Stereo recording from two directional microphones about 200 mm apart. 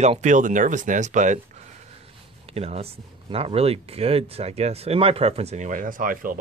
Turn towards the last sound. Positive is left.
turn(degrees=-45)  # may be behind; listen again after turning